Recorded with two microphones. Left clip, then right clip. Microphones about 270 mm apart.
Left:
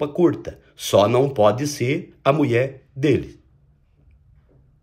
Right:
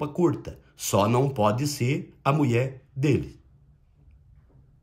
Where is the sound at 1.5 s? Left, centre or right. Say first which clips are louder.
Left 4 dB; left.